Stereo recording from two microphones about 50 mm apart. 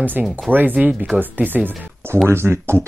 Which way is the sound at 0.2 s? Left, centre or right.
Right.